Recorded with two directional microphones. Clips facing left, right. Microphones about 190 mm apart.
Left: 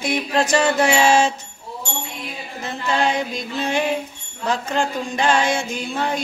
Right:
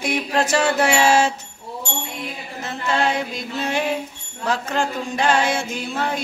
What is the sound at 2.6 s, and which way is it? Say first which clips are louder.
Mantra: left 1 dB; centre (ahead or behind).